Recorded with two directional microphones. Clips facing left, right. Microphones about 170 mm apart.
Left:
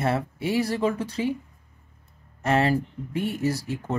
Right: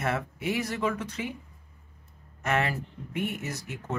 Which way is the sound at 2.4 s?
30° left (ahead or behind).